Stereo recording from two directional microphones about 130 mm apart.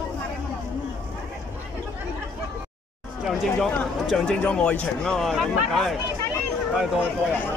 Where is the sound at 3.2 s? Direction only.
5° left (ahead or behind).